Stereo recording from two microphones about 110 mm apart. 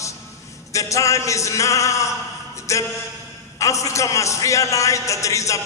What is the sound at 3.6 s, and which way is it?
Speech, 30° left (ahead or behind).